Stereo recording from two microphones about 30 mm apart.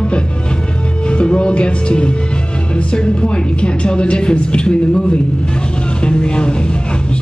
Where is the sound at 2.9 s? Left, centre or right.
Left.